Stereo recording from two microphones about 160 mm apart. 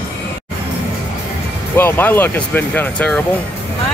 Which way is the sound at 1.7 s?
10° left (ahead or behind).